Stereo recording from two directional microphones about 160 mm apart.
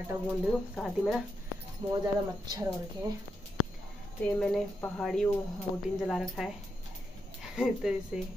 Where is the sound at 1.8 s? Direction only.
25° right (ahead or behind).